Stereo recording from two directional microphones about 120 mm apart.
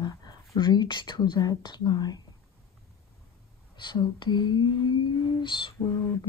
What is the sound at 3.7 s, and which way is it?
Speech, 40° left (ahead or behind).